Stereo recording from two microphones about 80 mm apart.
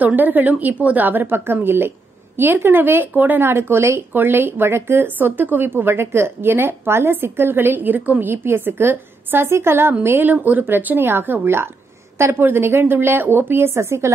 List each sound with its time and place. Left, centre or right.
0.0 s speech: right